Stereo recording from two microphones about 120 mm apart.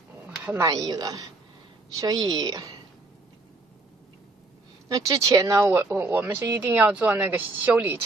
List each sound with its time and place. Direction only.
0.8 s a woman's voice: 35° right (ahead or behind)
4.8 s speech: 30° right (ahead or behind); by 8.0 s 15° right (ahead or behind)